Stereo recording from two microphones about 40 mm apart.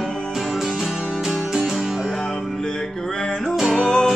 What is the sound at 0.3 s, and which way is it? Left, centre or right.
Music, centre.